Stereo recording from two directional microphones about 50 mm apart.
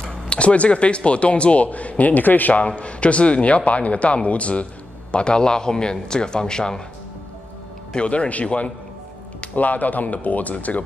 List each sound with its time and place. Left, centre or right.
0.1 s a man's voice: left
2.6 s a man's voice: left
7.9 s a man's voice: left